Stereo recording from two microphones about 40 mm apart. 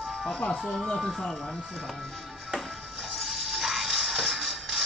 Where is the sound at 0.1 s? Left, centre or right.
Centre.